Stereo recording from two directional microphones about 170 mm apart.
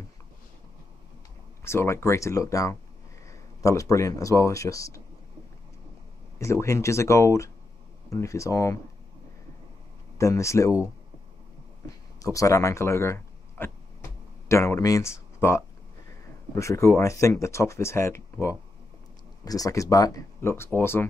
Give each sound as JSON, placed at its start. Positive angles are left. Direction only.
{"t": 1.6, "sound": "speech", "side_deg": 15}
{"t": 6.3, "sound": "speech", "side_deg": 15}
{"t": 10.1, "sound": "speech", "side_deg": 15}
{"t": 12.2, "sound": "speech", "side_deg": 20}